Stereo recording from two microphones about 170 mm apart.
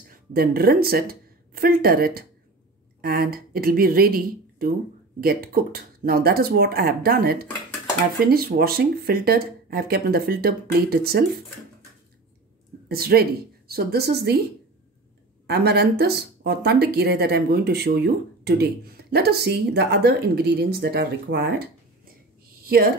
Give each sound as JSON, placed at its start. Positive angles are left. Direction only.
{"t": 0.3, "sound": "speech", "side_deg": -65}
{"t": 12.8, "sound": "a woman's voice", "side_deg": -65}
{"t": 15.4, "sound": "speech", "side_deg": -70}
{"t": 22.7, "sound": "speech", "side_deg": -60}